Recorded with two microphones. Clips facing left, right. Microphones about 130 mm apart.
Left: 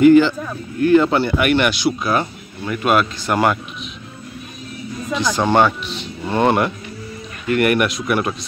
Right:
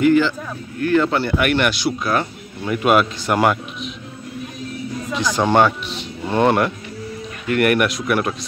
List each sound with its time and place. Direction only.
0.0 s speech: 20° left (ahead or behind)
1.2 s speech: 5° left (ahead or behind)
2.6 s speech: 10° right (ahead or behind)
5.3 s speech: 10° right (ahead or behind)
6.2 s speech: 5° left (ahead or behind)